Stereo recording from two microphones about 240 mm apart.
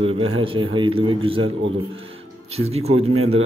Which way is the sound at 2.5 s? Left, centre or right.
Right.